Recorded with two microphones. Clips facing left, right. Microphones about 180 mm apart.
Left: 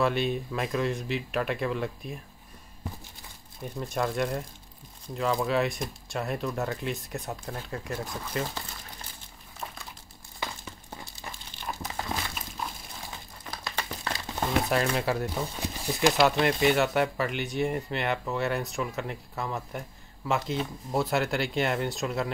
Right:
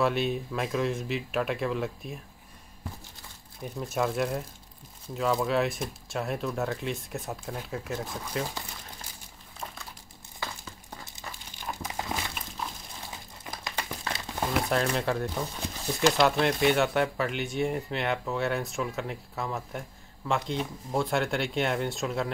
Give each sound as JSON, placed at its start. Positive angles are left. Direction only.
{"t": 0.0, "sound": "speech", "side_deg": 0}
{"t": 3.6, "sound": "speech", "side_deg": 0}
{"t": 11.1, "sound": "dog", "side_deg": -15}
{"t": 13.7, "sound": "crumpling", "side_deg": -15}
{"t": 14.4, "sound": "crumpling", "side_deg": 0}
{"t": 15.0, "sound": "speech", "side_deg": 5}
{"t": 16.1, "sound": "speech", "side_deg": 0}